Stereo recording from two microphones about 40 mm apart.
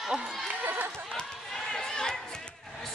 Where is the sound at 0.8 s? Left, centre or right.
Right.